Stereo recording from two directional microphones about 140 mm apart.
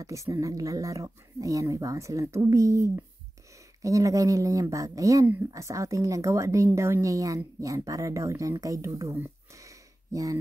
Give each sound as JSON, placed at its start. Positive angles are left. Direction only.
{"t": 0.0, "sound": "speech", "side_deg": -25}